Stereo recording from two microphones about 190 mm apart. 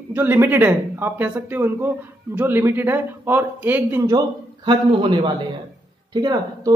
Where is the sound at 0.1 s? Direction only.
10° right (ahead or behind).